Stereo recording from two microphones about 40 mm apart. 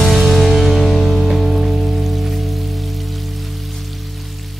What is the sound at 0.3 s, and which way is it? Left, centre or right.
Music, centre.